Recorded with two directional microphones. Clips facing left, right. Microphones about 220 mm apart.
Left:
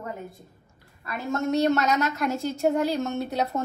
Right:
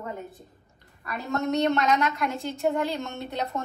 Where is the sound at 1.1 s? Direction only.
Centre (ahead or behind).